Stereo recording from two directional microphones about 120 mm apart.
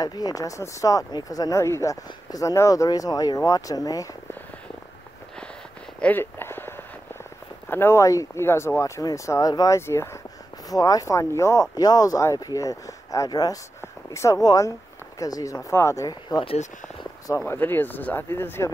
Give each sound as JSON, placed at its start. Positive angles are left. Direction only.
{"t": 0.0, "sound": "speech", "side_deg": 30}
{"t": 5.9, "sound": "a sound", "side_deg": 15}
{"t": 7.7, "sound": "speech", "side_deg": 20}
{"t": 17.4, "sound": "speech", "side_deg": 20}